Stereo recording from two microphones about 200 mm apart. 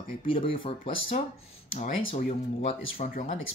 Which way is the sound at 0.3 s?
30° left (ahead or behind).